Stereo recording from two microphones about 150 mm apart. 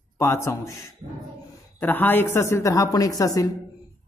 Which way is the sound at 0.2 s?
20° left (ahead or behind).